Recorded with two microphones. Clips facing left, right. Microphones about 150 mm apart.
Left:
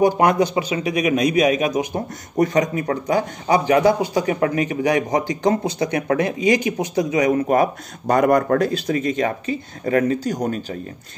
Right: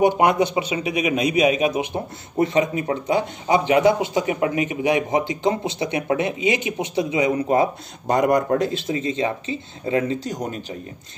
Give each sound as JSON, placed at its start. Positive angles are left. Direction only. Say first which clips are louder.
{"t": 0.0, "sound": "speech", "louder": "left 1 dB", "side_deg": -20}